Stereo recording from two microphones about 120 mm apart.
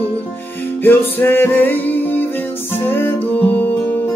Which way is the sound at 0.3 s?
15° left (ahead or behind).